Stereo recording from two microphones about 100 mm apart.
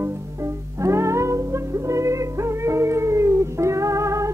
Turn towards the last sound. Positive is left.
turn(degrees=-30)  # may be behind; listen again after turning